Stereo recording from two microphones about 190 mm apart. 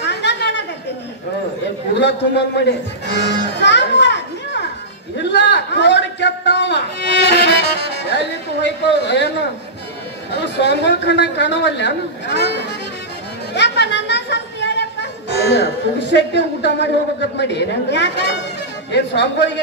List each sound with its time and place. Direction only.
0.0 s a sound: 65° left (ahead or behind)
2.0 s speech: 65° left (ahead or behind)
5.1 s a sound: 65° left (ahead or behind)
10.3 s a man's voice: 65° left (ahead or behind)
13.6 s music: 65° left (ahead or behind)
17.4 s a man's voice: 65° left (ahead or behind)